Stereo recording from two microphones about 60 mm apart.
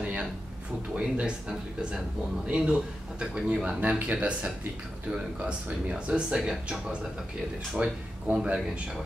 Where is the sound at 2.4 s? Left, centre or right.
Centre.